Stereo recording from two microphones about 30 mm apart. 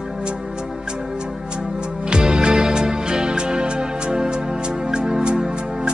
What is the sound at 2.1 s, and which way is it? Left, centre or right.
Music, right.